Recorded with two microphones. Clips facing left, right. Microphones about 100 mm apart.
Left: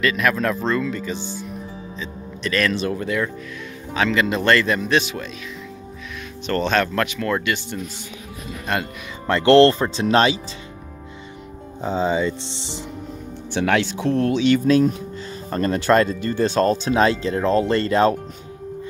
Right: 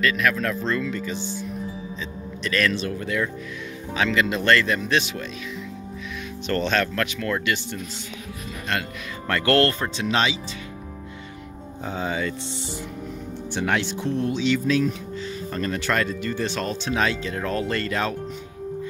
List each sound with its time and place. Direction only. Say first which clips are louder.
0.0 s speech: left 3 dB; 10° left (ahead or behind)
2.0 s music: left 1 dB; 5° left (ahead or behind)
3.9 s speech: left 2 dB; centre (ahead or behind)
6.4 s speech: left 3 dB; centre (ahead or behind)
9.3 s speech: left 7 dB; 25° left (ahead or behind); by 10.4 s 45° left (ahead or behind)
11.8 s speech: left 6 dB; 25° left (ahead or behind)
13.5 s speech: left 5 dB; 75° left (ahead or behind); by 14.9 s 50° left (ahead or behind)
15.5 s speech: left 8 dB; 40° left (ahead or behind)